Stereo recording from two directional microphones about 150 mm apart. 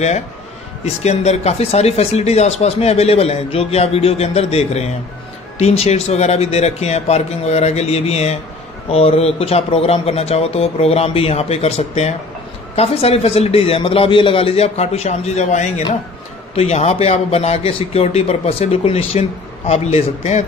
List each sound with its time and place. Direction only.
1.0 s a man's voice: 45° left (ahead or behind)